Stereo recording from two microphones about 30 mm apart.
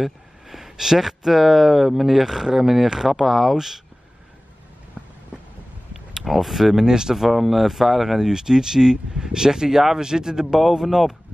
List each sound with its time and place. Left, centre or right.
0.0 s speech: centre
3.3 s speech: centre
3.5 s speech: centre
6.2 s speech: centre
6.9 s speech: right
7.2 s speech: centre